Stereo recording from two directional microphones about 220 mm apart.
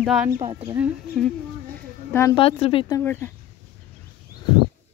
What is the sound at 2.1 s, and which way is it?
Speech, 10° left (ahead or behind).